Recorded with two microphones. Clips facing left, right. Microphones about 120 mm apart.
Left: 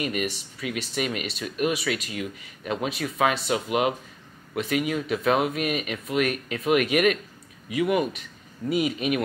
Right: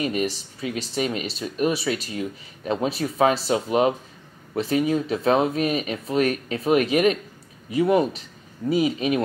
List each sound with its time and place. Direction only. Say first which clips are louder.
0.0 s speech: right 3 dB; 30° right (ahead or behind)